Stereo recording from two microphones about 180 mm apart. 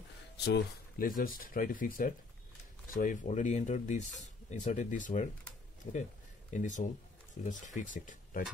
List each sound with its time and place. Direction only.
0.5 s speech: 60° left (ahead or behind); by 5.3 s 45° left (ahead or behind)
6.5 s speech: 45° left (ahead or behind)